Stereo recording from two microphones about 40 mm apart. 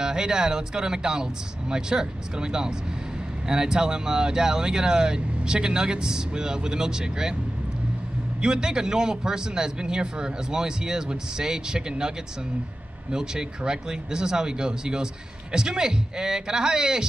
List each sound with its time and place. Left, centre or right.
0.0 s speech: centre
8.4 s speech: centre
13.1 s speech: centre